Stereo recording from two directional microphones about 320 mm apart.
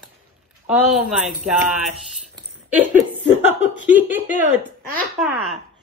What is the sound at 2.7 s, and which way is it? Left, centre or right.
Laughter, centre.